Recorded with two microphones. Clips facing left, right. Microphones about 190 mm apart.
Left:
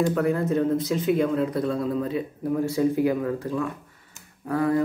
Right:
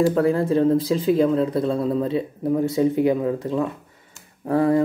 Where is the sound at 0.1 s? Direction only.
30° right (ahead or behind).